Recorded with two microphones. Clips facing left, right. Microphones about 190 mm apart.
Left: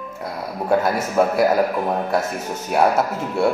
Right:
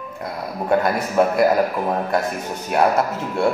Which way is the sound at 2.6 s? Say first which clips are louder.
Even; 5° left (ahead or behind).